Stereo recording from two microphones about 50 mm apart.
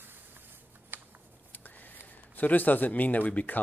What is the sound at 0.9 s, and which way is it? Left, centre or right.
Shuffling cards, right.